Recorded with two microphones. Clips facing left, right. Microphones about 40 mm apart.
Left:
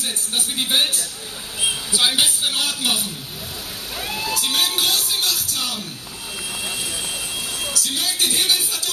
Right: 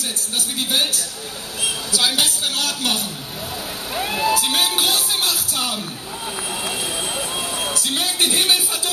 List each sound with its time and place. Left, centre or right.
0.6 s a man's voice: left; by 3.0 s centre
3.9 s music: centre
7.2 s speech: right